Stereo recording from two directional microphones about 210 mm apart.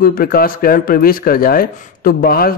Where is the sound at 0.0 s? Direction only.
45° left (ahead or behind).